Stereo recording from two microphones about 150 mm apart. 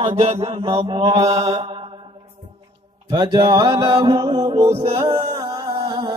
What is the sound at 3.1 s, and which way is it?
Music, 30° right (ahead or behind).